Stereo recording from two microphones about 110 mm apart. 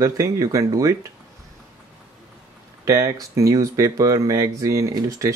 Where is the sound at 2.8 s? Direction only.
30° right (ahead or behind).